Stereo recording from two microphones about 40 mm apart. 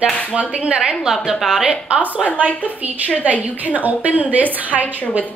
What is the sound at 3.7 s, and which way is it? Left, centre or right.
Speech, right.